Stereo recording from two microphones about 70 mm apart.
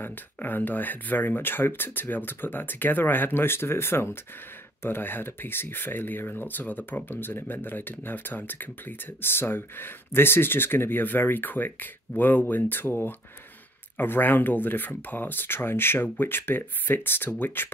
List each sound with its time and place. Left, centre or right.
0.0 s speech: left